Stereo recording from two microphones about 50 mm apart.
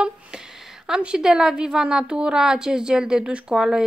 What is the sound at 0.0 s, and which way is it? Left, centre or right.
A woman's voice, centre.